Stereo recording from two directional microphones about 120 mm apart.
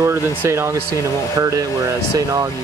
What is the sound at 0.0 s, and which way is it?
Speech, 20° right (ahead or behind).